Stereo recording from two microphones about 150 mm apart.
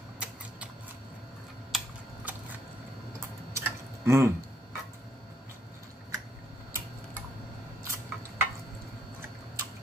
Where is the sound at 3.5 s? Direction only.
20° right (ahead or behind).